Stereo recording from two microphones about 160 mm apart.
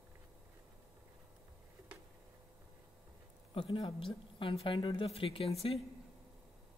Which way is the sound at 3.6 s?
30° left (ahead or behind).